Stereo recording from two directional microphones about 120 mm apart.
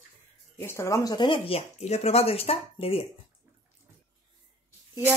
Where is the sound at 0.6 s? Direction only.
20° left (ahead or behind).